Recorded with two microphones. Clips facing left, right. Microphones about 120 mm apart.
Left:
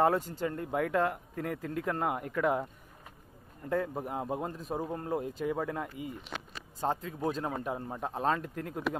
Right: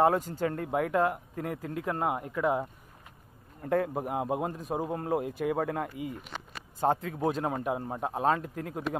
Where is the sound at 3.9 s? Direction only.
15° right (ahead or behind).